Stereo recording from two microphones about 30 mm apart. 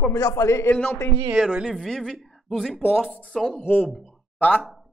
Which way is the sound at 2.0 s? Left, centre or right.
Centre.